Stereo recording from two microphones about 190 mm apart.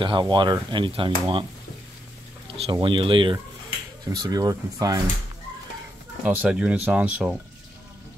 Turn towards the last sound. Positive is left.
turn(degrees=-5)  # may be behind; listen again after turning